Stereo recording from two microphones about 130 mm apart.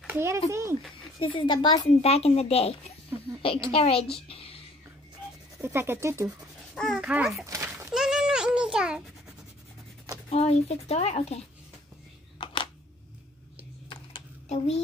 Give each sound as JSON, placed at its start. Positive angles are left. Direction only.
{"t": 0.0, "sound": "speech", "side_deg": -20}
{"t": 1.2, "sound": "speech", "side_deg": 40}
{"t": 1.9, "sound": "speech", "side_deg": 55}
{"t": 4.3, "sound": "a sound", "side_deg": 45}
{"t": 5.6, "sound": "speech", "side_deg": -20}
{"t": 6.7, "sound": "babbling", "side_deg": 5}
{"t": 7.0, "sound": "speech", "side_deg": -10}
{"t": 7.4, "sound": "a sound", "side_deg": -25}
{"t": 7.9, "sound": "a sound", "side_deg": -5}
{"t": 10.3, "sound": "speech", "side_deg": 50}